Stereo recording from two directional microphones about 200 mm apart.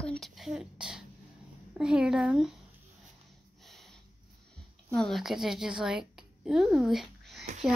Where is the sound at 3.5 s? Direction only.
Centre (ahead or behind).